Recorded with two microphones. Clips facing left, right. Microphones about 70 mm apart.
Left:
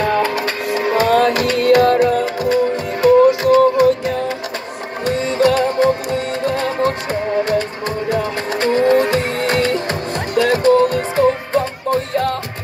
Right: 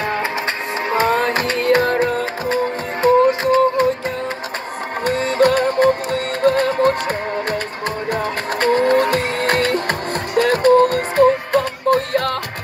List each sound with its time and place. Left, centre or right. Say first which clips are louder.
0.0 s music: left 4 dB; right
5.0 s music: even; right